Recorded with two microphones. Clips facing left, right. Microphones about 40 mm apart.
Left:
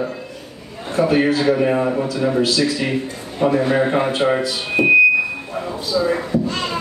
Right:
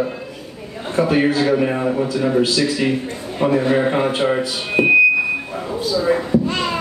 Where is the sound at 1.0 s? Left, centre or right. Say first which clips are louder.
Even; right.